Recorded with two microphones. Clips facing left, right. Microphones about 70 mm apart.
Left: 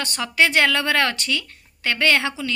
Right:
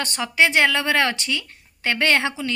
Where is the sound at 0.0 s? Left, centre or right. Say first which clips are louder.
Even; right.